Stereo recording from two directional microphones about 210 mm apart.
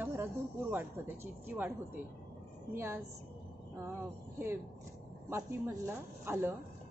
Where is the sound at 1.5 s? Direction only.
10° right (ahead or behind).